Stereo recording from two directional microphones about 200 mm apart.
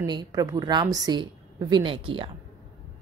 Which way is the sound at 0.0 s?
20° right (ahead or behind).